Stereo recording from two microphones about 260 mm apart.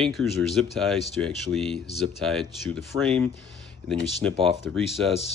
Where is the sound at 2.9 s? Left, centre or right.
Centre.